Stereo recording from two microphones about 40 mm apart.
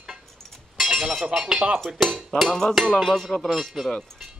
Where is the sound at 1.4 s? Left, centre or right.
Right.